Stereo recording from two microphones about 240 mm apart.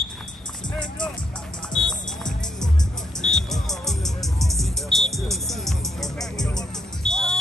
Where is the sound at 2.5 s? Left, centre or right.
Centre.